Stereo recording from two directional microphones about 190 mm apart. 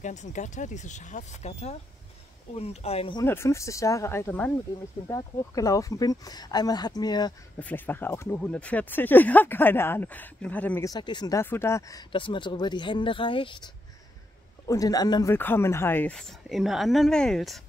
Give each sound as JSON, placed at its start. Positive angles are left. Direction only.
{"t": 0.0, "sound": "speech", "side_deg": 40}
{"t": 3.2, "sound": "speech", "side_deg": 15}
{"t": 7.5, "sound": "speech", "side_deg": 10}
{"t": 10.9, "sound": "speech", "side_deg": 25}
{"t": 12.1, "sound": "speech", "side_deg": 25}
{"t": 14.7, "sound": "speech", "side_deg": 20}